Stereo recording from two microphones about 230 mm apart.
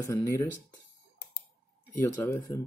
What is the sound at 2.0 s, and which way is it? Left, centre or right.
Speech, centre.